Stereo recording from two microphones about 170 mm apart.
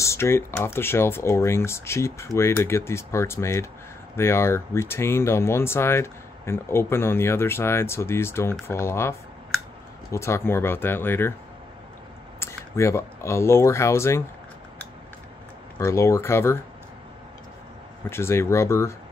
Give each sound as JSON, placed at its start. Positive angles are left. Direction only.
{"t": 0.0, "sound": "speech", "side_deg": 15}
{"t": 10.1, "sound": "speech", "side_deg": 15}
{"t": 12.4, "sound": "speech", "side_deg": 15}
{"t": 15.8, "sound": "speech", "side_deg": 15}
{"t": 18.1, "sound": "speech", "side_deg": 15}